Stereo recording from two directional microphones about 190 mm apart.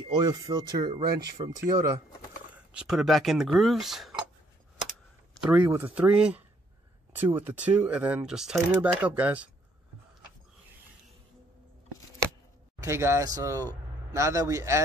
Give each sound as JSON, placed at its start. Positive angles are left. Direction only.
{"t": 0.2, "sound": "speech", "side_deg": -20}
{"t": 2.5, "sound": "speech", "side_deg": -5}
{"t": 5.4, "sound": "speech", "side_deg": -5}
{"t": 12.8, "sound": "speech", "side_deg": -15}